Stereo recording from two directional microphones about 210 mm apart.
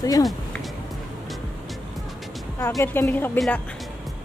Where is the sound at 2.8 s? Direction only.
10° left (ahead or behind).